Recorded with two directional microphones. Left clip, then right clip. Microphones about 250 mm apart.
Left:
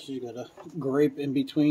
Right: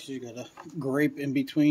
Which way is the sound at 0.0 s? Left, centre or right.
Right.